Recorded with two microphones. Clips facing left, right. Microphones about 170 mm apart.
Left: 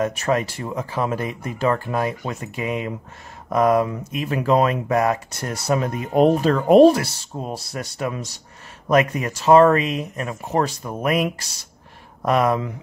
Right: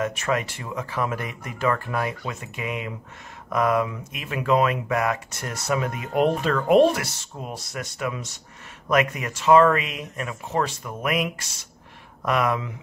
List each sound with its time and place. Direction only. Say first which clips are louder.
0.0 s speech: left 4 dB; 35° left (ahead or behind)